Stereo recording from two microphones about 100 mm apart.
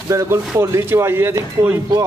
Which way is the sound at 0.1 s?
25° right (ahead or behind).